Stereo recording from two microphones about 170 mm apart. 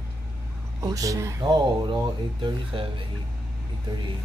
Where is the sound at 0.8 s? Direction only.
20° right (ahead or behind).